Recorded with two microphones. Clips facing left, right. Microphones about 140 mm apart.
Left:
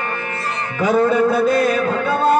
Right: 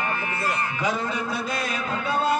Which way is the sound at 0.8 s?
50° left (ahead or behind).